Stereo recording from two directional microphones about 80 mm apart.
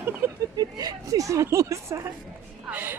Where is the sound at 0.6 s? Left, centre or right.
Right.